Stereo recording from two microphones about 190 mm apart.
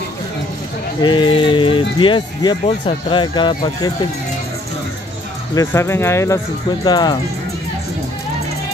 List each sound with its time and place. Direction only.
1.0 s speech: 25° left (ahead or behind)
5.5 s speech: 15° left (ahead or behind)